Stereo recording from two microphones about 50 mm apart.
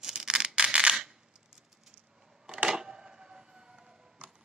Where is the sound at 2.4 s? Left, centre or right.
Centre.